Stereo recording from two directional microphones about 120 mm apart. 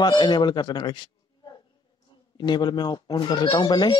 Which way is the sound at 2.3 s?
35° left (ahead or behind).